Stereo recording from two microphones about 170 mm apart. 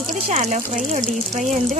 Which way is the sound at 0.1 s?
45° right (ahead or behind).